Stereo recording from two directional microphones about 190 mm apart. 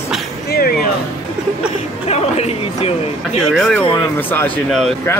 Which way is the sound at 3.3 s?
5° left (ahead or behind).